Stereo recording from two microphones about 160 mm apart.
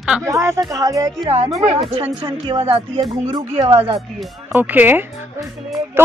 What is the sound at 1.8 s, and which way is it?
Speech, 35° right (ahead or behind).